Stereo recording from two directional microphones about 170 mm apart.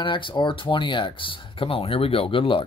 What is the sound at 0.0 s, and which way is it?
Speech, 30° left (ahead or behind).